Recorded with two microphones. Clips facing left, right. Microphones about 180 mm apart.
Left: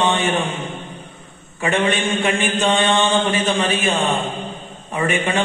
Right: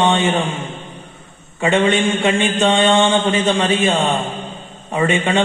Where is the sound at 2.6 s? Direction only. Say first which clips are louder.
Right 4 dB; 25° right (ahead or behind).